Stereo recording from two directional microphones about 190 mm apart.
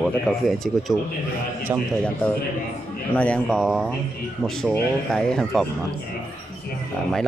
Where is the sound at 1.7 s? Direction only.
10° right (ahead or behind).